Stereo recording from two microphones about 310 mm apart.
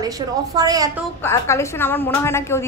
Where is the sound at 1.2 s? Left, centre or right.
Centre.